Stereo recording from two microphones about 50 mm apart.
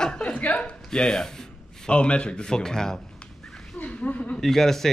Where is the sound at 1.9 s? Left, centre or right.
Left.